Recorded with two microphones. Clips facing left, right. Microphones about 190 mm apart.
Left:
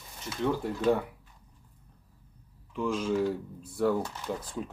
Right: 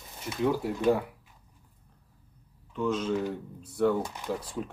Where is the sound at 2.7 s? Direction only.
10° left (ahead or behind).